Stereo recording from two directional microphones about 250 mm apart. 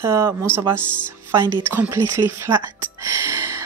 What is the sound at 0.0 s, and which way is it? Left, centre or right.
A woman's voice, centre.